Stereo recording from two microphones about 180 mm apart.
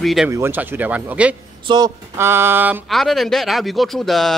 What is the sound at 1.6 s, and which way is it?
Speech, 25° right (ahead or behind).